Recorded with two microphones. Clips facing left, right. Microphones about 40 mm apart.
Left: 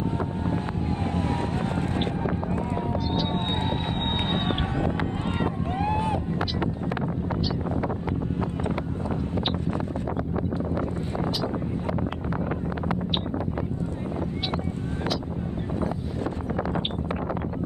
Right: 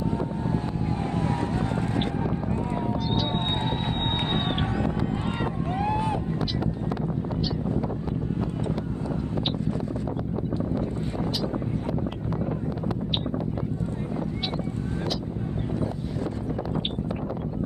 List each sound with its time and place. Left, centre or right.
1.0 s a sound: left
3.5 s run: left
4.5 s a sound: left
5.7 s boat: left
7.6 s wind noise: left
9.3 s wind noise: left
16.2 s vehicle: left